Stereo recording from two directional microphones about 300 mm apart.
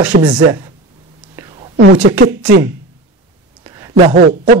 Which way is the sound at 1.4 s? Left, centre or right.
Centre.